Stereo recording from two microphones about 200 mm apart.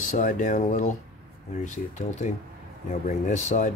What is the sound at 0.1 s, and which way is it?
Speech, 40° left (ahead or behind).